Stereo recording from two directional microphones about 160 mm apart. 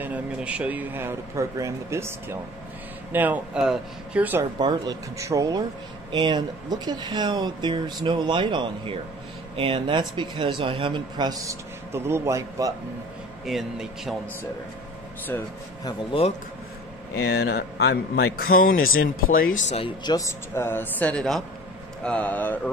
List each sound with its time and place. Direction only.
0.0 s speech: 10° right (ahead or behind)
4.6 s a man's voice: 25° right (ahead or behind)
13.5 s speech: centre (ahead or behind)
15.8 s speech: 30° left (ahead or behind)
17.1 s a man's voice: 90° left; by 18.8 s 65° left (ahead or behind)
19.7 s a man's voice: 30° left (ahead or behind); by 22.6 s 10° left (ahead or behind)